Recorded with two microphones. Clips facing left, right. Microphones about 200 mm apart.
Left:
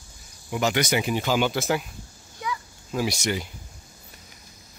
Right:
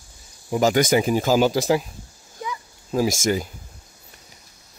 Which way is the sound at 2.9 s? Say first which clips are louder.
Right 5 dB; 40° right (ahead or behind).